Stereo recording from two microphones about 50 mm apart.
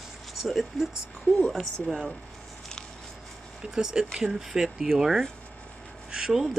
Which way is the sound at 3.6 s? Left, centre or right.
Centre.